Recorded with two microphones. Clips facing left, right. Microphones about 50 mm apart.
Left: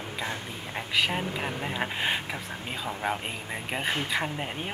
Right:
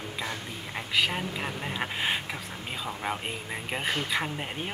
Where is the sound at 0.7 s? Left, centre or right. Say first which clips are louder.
Even; centre.